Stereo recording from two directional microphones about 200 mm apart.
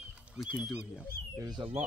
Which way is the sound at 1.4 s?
20° right (ahead or behind).